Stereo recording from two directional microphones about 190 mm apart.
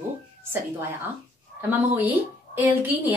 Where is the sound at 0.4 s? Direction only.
10° right (ahead or behind).